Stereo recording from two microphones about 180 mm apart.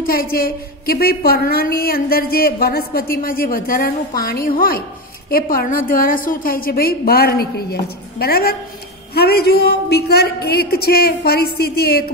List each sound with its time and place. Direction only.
0.0 s a woman's voice: 55° left (ahead or behind)